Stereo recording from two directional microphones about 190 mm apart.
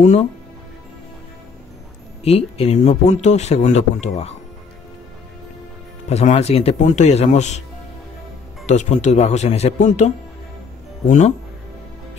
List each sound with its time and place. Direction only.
0.0 s speech: 40° left (ahead or behind)
2.2 s speech: 30° left (ahead or behind)
6.0 s speech: 35° left (ahead or behind)
8.6 s speech: 40° left (ahead or behind)